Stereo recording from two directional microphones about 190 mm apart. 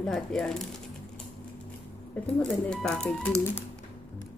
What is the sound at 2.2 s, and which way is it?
Speech, 5° left (ahead or behind).